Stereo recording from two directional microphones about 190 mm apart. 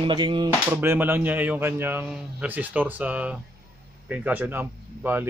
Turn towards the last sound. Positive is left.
turn(degrees=-10)  # may be behind; listen again after turning